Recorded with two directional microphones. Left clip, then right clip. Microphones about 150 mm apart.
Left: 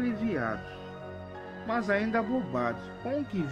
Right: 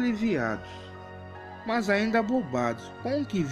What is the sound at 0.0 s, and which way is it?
Speech, 30° right (ahead or behind).